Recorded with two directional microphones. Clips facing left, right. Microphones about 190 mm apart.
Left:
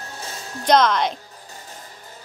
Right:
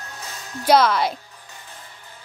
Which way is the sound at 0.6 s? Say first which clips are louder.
Even; 5° right (ahead or behind).